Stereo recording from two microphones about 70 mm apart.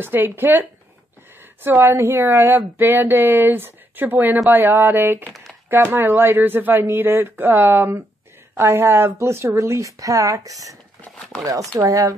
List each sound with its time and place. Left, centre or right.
0.0 s a woman's voice: right